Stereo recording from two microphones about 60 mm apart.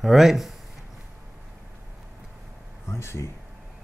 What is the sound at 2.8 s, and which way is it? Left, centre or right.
Speech, left.